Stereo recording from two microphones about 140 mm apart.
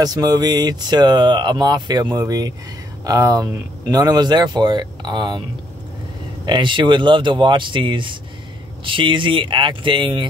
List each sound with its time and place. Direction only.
0.0 s speech: 30° right (ahead or behind)
6.4 s speech: 35° right (ahead or behind)